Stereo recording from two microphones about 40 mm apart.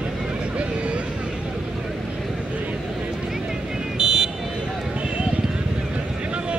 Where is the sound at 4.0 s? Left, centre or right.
Centre.